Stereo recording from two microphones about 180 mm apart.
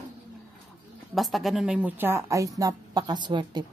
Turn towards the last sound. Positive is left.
turn(degrees=-25)  # may be behind; listen again after turning